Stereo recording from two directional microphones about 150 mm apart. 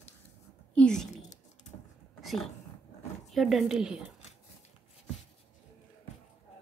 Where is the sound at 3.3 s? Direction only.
Centre (ahead or behind).